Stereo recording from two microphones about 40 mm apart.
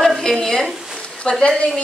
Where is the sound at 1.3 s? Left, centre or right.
Left.